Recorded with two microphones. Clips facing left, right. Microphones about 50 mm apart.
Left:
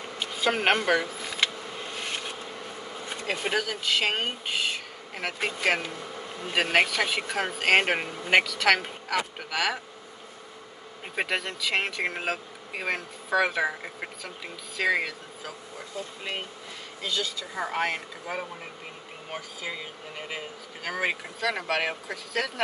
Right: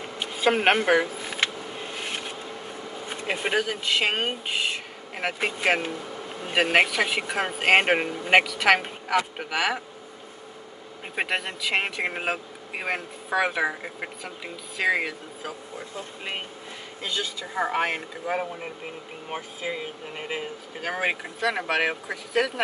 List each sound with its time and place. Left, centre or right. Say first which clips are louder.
0.2 s a sound: right 4 dB; centre
3.2 s speech: right 3 dB; centre
11.1 s speech: right 1 dB; centre
17.0 s speech: even; right